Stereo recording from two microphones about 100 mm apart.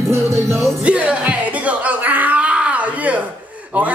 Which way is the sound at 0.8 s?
10° right (ahead or behind).